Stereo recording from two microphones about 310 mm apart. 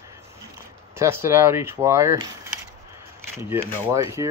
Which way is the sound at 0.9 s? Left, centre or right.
Centre.